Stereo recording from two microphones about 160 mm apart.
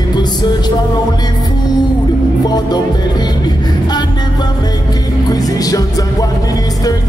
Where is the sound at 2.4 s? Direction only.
25° left (ahead or behind).